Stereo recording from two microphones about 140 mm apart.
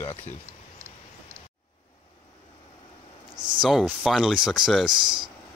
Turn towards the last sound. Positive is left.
turn(degrees=-5)  # may be behind; listen again after turning